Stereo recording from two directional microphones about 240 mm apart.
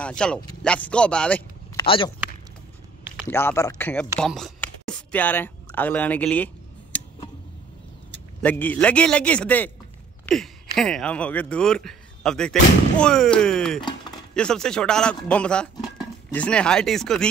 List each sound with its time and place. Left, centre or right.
0.0 s speech: centre
1.8 s speech: centre
3.2 s speech: centre
8.4 s speech: centre